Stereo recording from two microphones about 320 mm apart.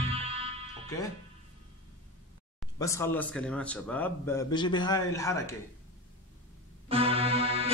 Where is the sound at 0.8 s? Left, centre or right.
Centre.